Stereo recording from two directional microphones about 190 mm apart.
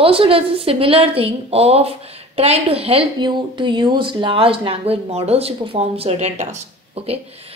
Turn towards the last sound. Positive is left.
turn(degrees=-30)  # may be behind; listen again after turning